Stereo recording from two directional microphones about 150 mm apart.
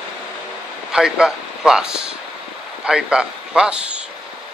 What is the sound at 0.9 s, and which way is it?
A man's voice, 5° right (ahead or behind).